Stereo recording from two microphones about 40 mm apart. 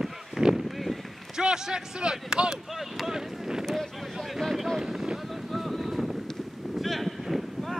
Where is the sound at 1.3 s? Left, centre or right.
Centre.